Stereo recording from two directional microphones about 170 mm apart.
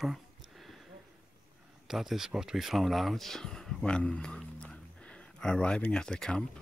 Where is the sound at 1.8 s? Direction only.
Centre (ahead or behind).